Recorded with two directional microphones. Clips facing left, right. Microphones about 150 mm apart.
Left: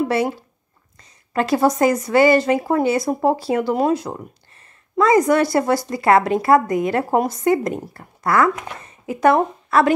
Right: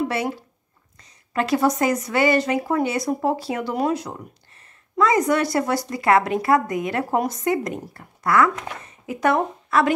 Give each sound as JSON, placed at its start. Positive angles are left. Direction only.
{"t": 1.3, "sound": "speech", "side_deg": 35}